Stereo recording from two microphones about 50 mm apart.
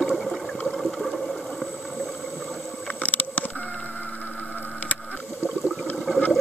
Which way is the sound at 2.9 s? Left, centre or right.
Left.